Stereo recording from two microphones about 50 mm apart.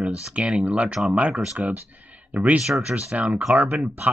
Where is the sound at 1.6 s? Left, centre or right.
Right.